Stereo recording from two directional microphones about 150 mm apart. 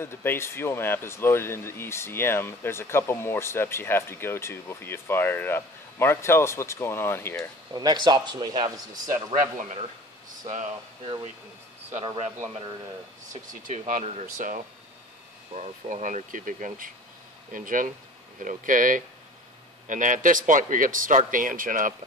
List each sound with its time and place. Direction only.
0.0 s speech: 15° left (ahead or behind)
7.7 s speech: 25° right (ahead or behind)
9.1 s speech: 55° right (ahead or behind)
12.2 s speech: 45° right (ahead or behind)
13.3 s speech: 60° right (ahead or behind)